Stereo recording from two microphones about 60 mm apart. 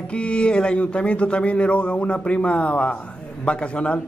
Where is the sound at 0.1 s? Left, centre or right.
Centre.